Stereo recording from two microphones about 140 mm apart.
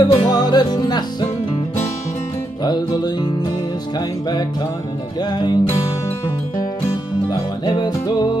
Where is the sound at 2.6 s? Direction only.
30° left (ahead or behind).